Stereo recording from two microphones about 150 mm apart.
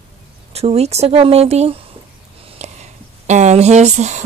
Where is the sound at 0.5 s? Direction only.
45° right (ahead or behind).